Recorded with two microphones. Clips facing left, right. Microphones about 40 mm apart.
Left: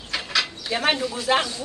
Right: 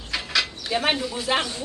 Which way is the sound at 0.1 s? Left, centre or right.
Centre.